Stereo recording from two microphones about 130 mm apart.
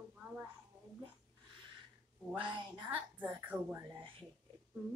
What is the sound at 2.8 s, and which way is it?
A woman's voice, 10° right (ahead or behind).